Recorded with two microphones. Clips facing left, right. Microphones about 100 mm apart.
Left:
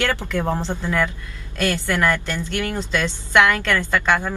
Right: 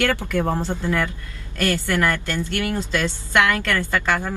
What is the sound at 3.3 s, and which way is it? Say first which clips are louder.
Speech: left 3 dB; 10° right (ahead or behind).